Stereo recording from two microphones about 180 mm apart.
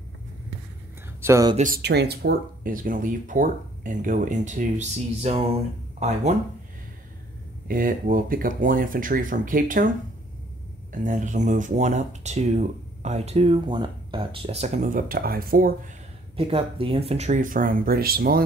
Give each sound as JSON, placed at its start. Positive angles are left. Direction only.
{"t": 1.2, "sound": "speech", "side_deg": -15}
{"t": 1.8, "sound": "speech", "side_deg": -65}
{"t": 7.6, "sound": "speech", "side_deg": -50}
{"t": 10.9, "sound": "speech", "side_deg": -45}
{"t": 16.3, "sound": "speech", "side_deg": -30}